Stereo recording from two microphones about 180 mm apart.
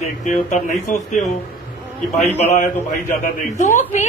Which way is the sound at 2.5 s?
40° left (ahead or behind).